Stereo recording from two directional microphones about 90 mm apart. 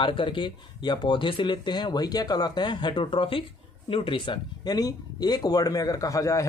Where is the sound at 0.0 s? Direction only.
70° left (ahead or behind).